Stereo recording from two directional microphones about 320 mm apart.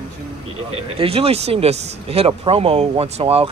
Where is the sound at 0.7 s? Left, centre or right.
Centre.